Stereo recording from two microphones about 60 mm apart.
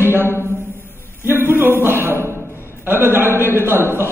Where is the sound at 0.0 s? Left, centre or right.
Right.